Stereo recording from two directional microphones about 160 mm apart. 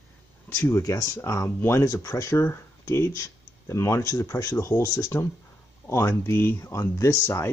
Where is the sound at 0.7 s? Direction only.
20° left (ahead or behind).